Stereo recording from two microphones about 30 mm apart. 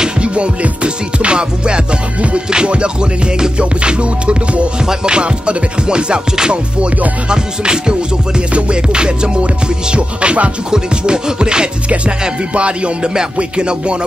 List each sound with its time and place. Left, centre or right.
0.2 s music: right
10.7 s music: right